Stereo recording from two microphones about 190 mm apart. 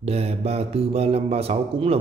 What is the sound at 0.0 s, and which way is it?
Speech, 30° right (ahead or behind).